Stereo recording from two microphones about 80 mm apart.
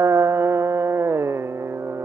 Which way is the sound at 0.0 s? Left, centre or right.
Right.